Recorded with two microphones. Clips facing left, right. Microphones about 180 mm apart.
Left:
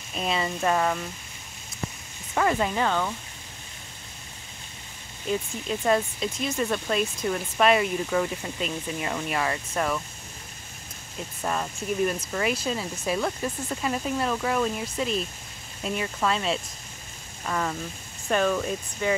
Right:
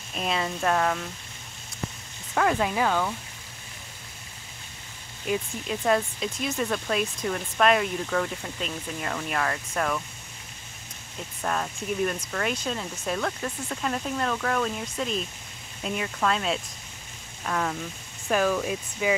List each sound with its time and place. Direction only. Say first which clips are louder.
0.1 s speech: left 1 dB; centre (ahead or behind)
2.3 s speech: even; centre (ahead or behind)
5.3 s speech: even; centre (ahead or behind)
11.4 s speech: even; 5° left (ahead or behind)